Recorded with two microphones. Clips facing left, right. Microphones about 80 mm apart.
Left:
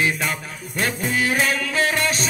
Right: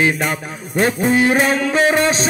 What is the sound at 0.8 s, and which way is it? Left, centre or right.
Music, right.